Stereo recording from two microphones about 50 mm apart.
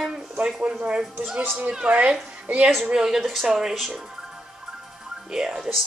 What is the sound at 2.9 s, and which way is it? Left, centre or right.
Speech, centre.